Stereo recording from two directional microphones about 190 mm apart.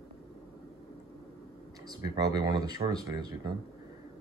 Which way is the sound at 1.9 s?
20° right (ahead or behind).